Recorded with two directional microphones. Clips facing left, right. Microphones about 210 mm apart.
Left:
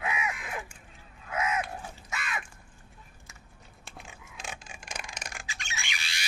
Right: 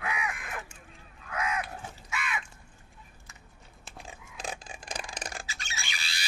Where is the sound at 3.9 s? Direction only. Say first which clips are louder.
Right 3 dB; 35° right (ahead or behind).